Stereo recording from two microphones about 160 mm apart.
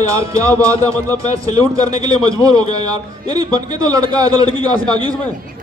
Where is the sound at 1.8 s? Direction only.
20° right (ahead or behind).